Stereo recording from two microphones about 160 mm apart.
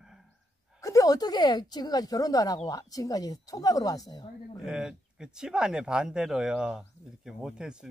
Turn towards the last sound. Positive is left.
turn(degrees=-5)  # may be behind; listen again after turning